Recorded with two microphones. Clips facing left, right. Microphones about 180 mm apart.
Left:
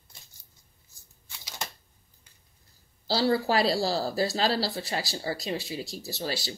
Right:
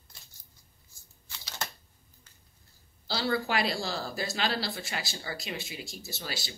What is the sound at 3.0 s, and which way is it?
Speech, 35° left (ahead or behind).